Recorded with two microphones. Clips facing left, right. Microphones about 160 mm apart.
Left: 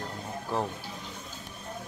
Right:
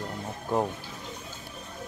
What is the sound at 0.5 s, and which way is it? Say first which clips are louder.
Speech: right 4 dB; 15° right (ahead or behind).